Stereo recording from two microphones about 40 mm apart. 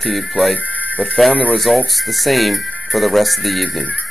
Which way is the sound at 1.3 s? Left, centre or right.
Left.